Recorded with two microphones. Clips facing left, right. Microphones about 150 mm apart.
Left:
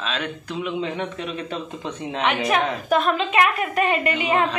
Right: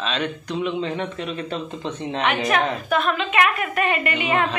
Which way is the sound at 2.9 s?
35° left (ahead or behind).